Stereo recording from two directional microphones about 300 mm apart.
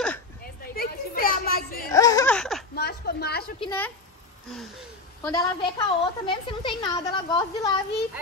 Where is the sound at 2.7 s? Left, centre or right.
Left.